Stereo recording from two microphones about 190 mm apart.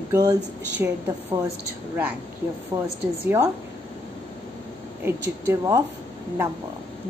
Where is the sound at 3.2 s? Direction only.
15° right (ahead or behind).